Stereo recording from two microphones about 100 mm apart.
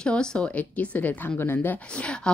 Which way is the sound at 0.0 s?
10° left (ahead or behind).